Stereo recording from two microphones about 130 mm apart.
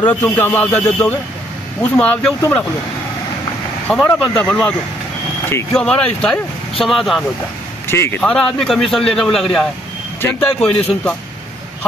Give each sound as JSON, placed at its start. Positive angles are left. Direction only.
{"t": 0.0, "sound": "speech", "side_deg": 15}
{"t": 3.8, "sound": "speech", "side_deg": 10}
{"t": 7.9, "sound": "speech", "side_deg": 20}
{"t": 8.2, "sound": "speech", "side_deg": 5}